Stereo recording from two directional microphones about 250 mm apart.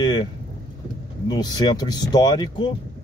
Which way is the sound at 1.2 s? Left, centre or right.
Centre.